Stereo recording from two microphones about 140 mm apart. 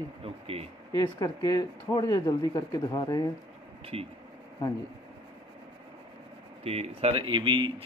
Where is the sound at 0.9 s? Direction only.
30° left (ahead or behind).